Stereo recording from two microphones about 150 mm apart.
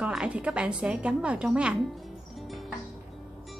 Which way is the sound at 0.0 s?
5° right (ahead or behind).